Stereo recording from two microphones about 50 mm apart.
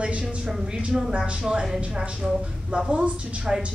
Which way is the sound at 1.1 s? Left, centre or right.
Right.